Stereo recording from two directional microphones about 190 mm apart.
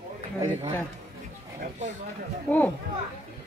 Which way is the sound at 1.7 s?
40° right (ahead or behind).